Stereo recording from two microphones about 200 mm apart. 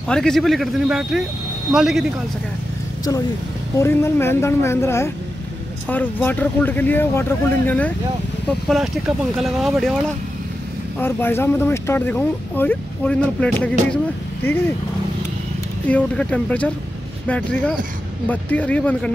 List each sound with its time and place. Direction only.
0.1 s speech: 5° left (ahead or behind)
3.7 s speech: 15° left (ahead or behind)
15.9 s speech: 5° left (ahead or behind)